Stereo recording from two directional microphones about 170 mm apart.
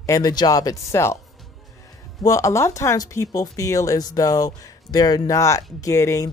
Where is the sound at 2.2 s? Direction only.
15° left (ahead or behind).